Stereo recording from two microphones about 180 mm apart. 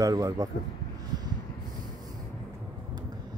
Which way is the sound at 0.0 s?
20° right (ahead or behind).